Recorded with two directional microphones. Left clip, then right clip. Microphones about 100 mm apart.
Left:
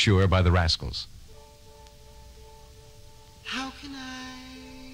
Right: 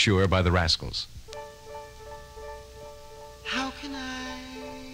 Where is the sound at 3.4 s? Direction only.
15° left (ahead or behind).